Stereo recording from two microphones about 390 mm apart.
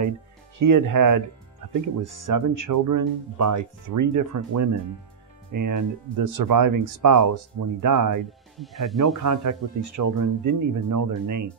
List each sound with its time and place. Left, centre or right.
0.6 s speech: right
8.5 s speech: centre
9.2 s speech: right